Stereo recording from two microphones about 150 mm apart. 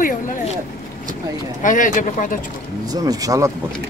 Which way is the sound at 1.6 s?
60° left (ahead or behind).